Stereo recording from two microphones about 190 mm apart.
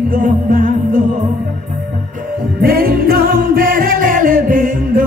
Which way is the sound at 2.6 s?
50° right (ahead or behind).